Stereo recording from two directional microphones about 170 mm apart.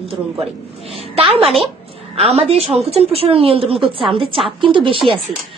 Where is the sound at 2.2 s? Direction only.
35° right (ahead or behind).